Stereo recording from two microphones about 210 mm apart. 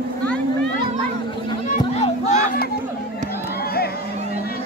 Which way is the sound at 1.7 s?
30° left (ahead or behind).